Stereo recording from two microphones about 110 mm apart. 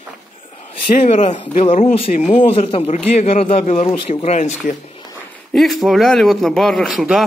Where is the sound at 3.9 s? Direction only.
50° left (ahead or behind).